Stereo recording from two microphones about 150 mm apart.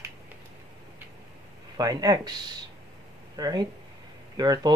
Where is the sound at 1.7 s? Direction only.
25° right (ahead or behind).